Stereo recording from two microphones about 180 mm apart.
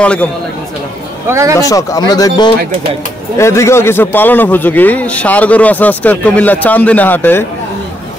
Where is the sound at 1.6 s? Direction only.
20° left (ahead or behind).